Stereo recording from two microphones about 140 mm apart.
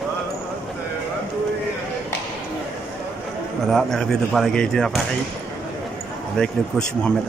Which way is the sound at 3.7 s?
Centre (ahead or behind).